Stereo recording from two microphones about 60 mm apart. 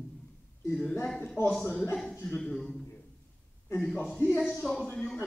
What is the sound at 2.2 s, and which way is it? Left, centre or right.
Speech, centre.